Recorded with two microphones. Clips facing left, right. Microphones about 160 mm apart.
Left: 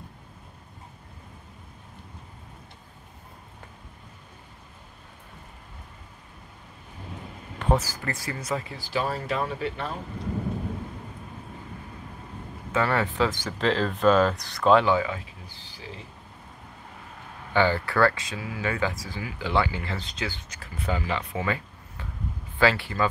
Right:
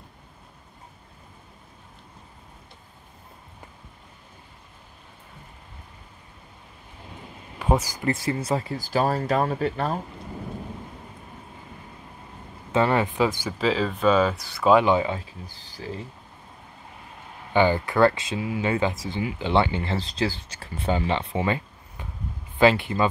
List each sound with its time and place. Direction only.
7.5 s speech: 10° right (ahead or behind); by 9.9 s 40° right (ahead or behind)
12.7 s speech: 20° right (ahead or behind)
15.0 s speech: 30° right (ahead or behind)
17.5 s speech: 15° right (ahead or behind)